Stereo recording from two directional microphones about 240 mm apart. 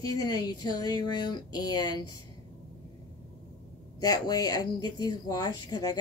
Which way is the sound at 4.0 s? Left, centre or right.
Centre.